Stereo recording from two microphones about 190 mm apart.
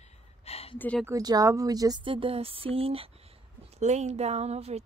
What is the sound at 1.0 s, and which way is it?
A woman's voice, 20° right (ahead or behind).